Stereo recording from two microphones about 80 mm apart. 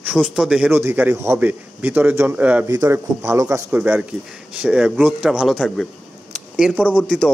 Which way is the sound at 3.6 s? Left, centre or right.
Right.